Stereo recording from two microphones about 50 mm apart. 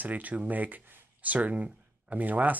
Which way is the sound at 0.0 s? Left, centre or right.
Right.